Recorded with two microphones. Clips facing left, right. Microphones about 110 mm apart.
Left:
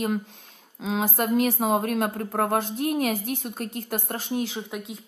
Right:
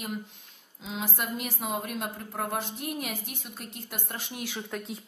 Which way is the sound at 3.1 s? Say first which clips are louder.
Left 10 dB; 40° left (ahead or behind).